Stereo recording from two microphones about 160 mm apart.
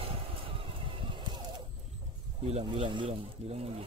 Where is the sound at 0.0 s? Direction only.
35° right (ahead or behind).